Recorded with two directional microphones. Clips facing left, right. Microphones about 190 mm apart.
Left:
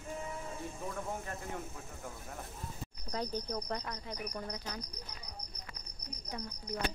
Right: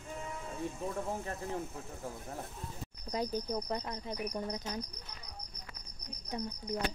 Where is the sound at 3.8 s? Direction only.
25° right (ahead or behind).